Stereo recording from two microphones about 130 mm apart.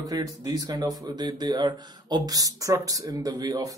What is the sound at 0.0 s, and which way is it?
Speech, 30° right (ahead or behind).